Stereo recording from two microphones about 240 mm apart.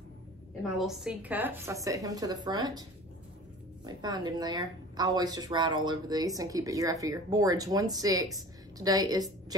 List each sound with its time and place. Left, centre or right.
0.6 s a woman's voice: centre
3.8 s a woman's voice: centre